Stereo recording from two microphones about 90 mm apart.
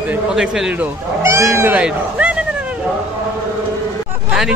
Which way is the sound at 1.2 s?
30° right (ahead or behind).